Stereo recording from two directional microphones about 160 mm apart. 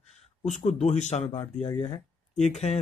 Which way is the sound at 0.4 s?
45° left (ahead or behind).